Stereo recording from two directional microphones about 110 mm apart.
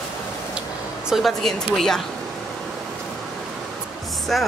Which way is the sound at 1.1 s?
Centre (ahead or behind).